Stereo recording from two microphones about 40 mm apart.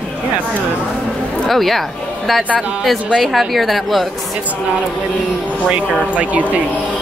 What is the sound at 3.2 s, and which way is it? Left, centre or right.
Speech, centre.